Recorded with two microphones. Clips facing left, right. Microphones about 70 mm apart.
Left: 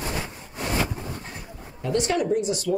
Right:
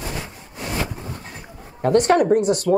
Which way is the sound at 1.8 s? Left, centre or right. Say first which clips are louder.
Right 8 dB; right.